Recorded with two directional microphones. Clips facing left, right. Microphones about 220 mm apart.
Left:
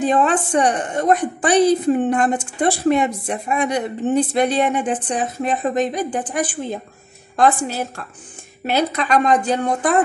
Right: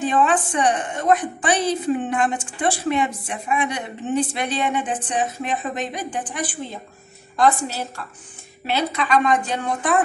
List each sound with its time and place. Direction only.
0.0 s a woman's voice: 40° left (ahead or behind)
8.6 s a woman's voice: 40° left (ahead or behind)